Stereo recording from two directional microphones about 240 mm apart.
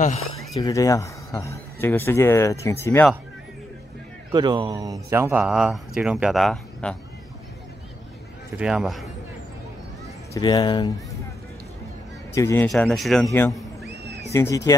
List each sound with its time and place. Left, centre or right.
0.6 s speech: centre
4.3 s a man's voice: centre
8.5 s speech: centre
10.3 s speech: centre
12.4 s speech: centre
14.3 s speech: centre